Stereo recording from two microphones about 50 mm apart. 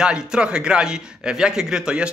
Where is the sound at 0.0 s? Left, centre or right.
Centre.